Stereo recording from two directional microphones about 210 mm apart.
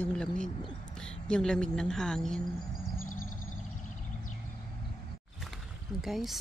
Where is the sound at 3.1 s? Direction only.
40° left (ahead or behind).